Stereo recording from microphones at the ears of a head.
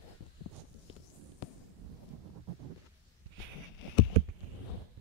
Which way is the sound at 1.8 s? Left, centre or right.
Right.